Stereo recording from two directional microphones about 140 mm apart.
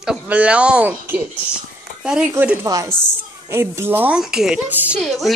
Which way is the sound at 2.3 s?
15° right (ahead or behind).